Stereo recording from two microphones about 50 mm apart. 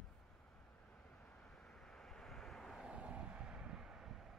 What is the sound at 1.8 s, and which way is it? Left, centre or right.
Vehicle, centre.